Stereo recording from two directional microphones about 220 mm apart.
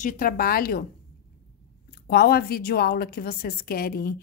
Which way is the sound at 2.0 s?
45° left (ahead or behind).